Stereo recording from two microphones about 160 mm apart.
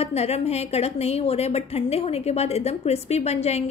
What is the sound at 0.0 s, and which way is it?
A woman's voice, 40° left (ahead or behind).